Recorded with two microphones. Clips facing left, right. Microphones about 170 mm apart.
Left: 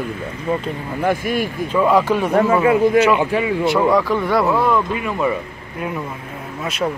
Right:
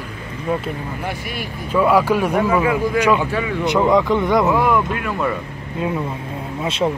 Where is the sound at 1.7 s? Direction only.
10° right (ahead or behind).